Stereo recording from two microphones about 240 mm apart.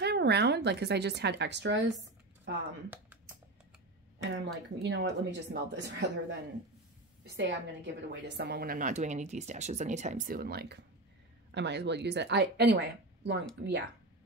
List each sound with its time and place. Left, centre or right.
0.0 s speech: right
4.3 s speech: right
7.3 s a woman's voice: right